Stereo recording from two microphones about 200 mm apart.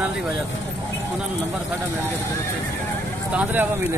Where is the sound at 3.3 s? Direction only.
10° right (ahead or behind).